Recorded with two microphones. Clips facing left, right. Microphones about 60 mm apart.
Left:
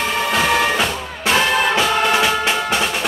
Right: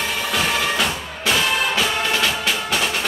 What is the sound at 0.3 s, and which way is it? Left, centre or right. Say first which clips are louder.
Music: left 5 dB; left.